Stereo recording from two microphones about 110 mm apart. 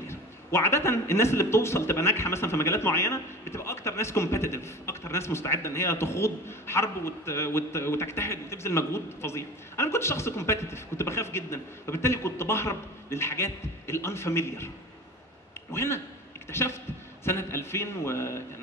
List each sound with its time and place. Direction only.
0.0 s a man's voice: 25° left (ahead or behind)
15.7 s a man's voice: 25° left (ahead or behind)